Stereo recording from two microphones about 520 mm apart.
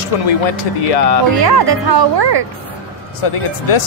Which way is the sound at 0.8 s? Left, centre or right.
Left.